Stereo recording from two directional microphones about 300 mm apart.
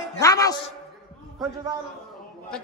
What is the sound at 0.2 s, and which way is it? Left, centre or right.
Music, centre.